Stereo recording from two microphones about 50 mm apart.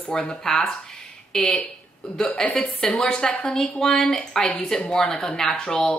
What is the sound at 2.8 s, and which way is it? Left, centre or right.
Speech, centre.